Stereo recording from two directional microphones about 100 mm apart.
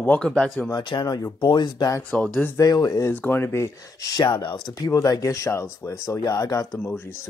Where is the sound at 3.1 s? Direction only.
20° left (ahead or behind); by 4.5 s 50° left (ahead or behind).